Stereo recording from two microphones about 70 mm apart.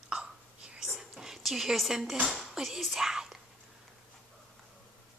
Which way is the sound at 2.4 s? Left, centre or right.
Centre.